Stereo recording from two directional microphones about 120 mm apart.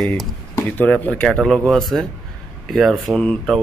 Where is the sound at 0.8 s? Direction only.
10° left (ahead or behind).